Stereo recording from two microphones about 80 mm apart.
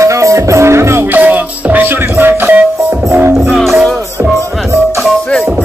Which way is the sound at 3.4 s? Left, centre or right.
Centre.